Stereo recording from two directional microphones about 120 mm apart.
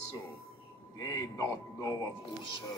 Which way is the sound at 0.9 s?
30° left (ahead or behind).